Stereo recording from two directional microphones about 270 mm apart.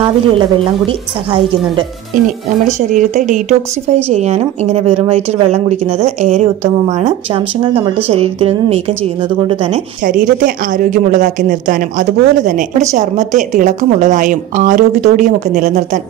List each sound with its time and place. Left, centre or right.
0.0 s speech: centre
2.9 s a woman's voice: right
10.4 s a woman's voice: right